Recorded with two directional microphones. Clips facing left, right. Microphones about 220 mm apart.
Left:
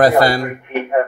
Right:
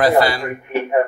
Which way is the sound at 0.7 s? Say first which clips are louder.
Right 4 dB; centre (ahead or behind).